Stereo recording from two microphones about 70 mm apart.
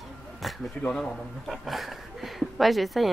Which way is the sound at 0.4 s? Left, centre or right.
Centre.